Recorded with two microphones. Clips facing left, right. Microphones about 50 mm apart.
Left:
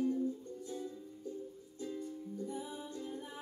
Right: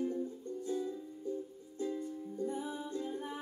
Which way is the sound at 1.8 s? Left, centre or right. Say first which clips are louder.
Right 4 dB; right.